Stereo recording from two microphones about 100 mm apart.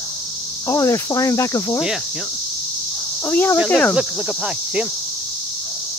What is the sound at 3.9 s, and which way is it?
Speech, 5° right (ahead or behind).